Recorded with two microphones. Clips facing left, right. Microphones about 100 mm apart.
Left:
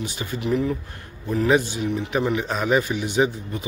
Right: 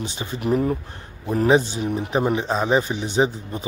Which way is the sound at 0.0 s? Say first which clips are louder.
Even; 25° right (ahead or behind).